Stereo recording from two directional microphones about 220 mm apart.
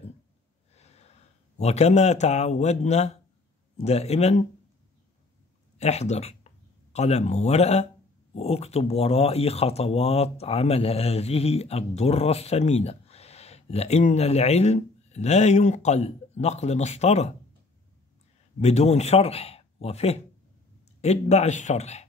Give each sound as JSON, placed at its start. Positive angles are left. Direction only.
{"t": 0.7, "sound": "snort", "side_deg": 30}
{"t": 1.6, "sound": "speech", "side_deg": 30}
{"t": 5.8, "sound": "speech", "side_deg": 30}
{"t": 18.6, "sound": "speech", "side_deg": 30}